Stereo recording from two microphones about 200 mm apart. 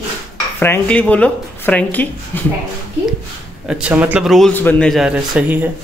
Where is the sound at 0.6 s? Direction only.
10° left (ahead or behind).